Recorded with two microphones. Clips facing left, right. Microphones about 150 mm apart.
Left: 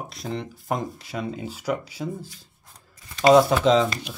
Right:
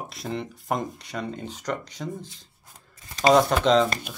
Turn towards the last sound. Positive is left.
turn(degrees=0)  # may be behind; listen again after turning